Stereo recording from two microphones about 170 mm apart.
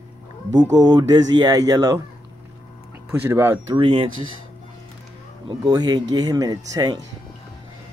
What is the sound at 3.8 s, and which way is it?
Speech, 30° right (ahead or behind).